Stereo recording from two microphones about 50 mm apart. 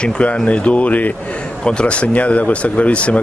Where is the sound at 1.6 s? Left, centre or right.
Centre.